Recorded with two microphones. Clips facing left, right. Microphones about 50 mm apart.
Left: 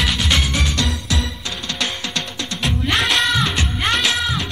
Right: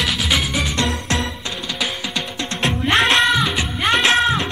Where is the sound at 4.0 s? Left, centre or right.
Right.